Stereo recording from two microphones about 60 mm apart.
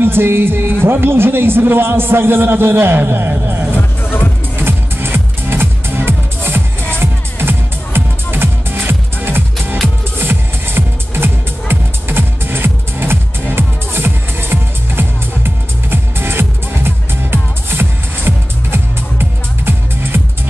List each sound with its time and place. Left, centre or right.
0.0 s a man's voice: right
4.0 s music: left
4.6 s music: right